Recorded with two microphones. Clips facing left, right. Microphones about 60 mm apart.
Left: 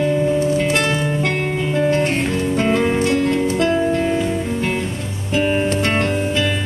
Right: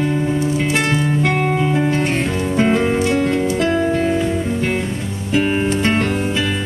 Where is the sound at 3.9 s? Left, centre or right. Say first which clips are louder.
Right 1 dB; centre.